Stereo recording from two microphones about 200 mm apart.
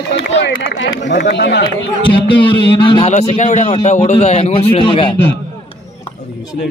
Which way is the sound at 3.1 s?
35° left (ahead or behind).